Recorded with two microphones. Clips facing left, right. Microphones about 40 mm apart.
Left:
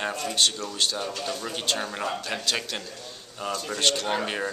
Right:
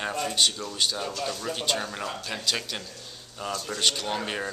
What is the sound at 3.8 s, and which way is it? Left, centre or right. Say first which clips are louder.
Speech: left 3 dB; centre.